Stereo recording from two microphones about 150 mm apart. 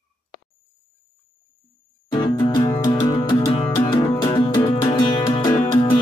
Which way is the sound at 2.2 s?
25° left (ahead or behind).